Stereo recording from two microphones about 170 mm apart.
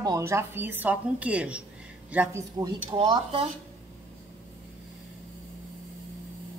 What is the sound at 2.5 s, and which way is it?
Speech, 20° right (ahead or behind).